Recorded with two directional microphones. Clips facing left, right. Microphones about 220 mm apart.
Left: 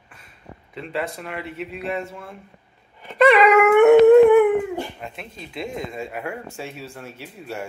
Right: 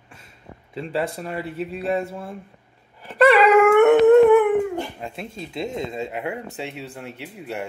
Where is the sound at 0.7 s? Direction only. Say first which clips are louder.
Right 3 dB; 30° right (ahead or behind).